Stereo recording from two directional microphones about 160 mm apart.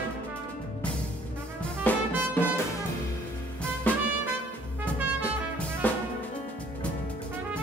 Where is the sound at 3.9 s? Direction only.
10° left (ahead or behind).